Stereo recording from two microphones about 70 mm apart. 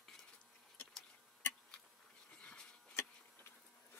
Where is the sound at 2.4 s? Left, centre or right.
Centre.